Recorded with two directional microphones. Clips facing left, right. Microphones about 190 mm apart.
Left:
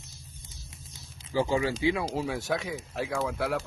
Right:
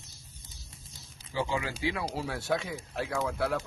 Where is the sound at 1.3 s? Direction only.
40° left (ahead or behind).